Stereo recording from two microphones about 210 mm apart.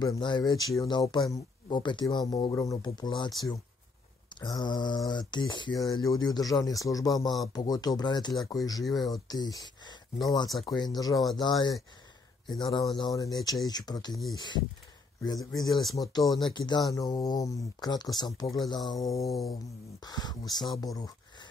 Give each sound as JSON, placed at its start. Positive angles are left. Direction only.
{"t": 0.0, "sound": "speech", "side_deg": 20}
{"t": 8.9, "sound": "speech", "side_deg": 0}
{"t": 9.6, "sound": "speech", "side_deg": 20}